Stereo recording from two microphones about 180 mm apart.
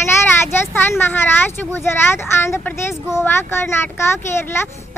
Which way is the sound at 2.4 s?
15° left (ahead or behind).